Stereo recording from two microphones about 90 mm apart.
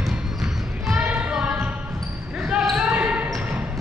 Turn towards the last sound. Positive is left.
turn(degrees=-15)  # may be behind; listen again after turning